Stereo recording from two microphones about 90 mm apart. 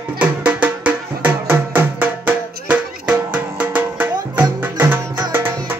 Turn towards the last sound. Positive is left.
turn(degrees=-25)  # may be behind; listen again after turning